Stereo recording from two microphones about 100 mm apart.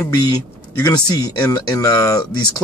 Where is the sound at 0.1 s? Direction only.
40° left (ahead or behind).